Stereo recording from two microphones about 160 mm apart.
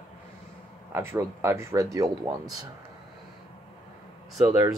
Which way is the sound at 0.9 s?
15° right (ahead or behind).